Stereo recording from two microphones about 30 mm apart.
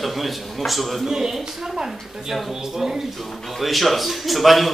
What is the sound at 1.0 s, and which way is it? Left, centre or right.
Speech, centre.